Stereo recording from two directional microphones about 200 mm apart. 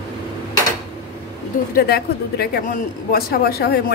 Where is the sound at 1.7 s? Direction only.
50° left (ahead or behind).